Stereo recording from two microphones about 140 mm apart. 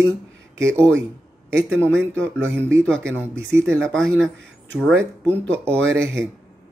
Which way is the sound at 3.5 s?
5° left (ahead or behind).